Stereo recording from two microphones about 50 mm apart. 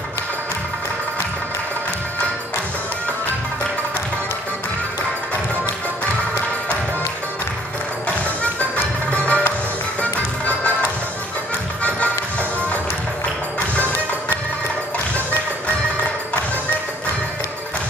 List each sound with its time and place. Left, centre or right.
8.7 s music: left